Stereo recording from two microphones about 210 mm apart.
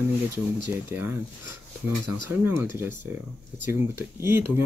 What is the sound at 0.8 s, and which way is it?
Speech, 10° right (ahead or behind).